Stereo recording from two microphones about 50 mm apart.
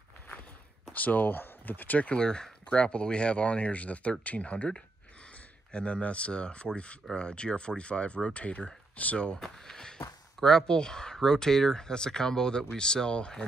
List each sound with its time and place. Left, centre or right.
0.9 s speech: left
2.1 s speech: centre
9.4 s a sound: centre
10.4 s speech: centre